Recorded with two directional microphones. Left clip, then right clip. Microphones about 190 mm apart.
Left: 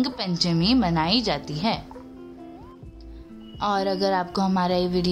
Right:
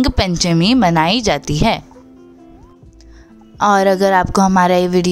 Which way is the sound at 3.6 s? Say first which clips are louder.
Right 12 dB; 45° right (ahead or behind).